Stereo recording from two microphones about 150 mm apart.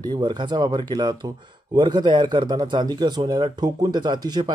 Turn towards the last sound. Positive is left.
turn(degrees=-30)  # may be behind; listen again after turning